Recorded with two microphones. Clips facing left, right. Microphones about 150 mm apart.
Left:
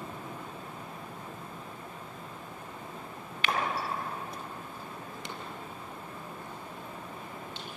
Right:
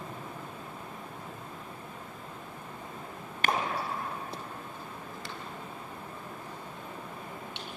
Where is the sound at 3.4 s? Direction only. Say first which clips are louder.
Right 3 dB; 45° right (ahead or behind).